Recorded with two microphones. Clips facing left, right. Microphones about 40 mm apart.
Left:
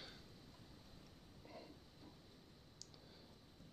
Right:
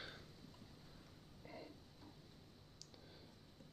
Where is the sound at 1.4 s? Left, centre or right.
Centre.